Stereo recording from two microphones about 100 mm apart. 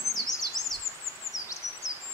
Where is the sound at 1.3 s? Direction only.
30° left (ahead or behind).